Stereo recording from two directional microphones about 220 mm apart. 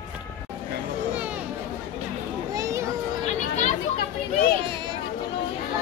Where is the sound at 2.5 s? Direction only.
15° right (ahead or behind).